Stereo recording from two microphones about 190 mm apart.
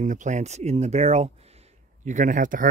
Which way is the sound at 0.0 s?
40° right (ahead or behind).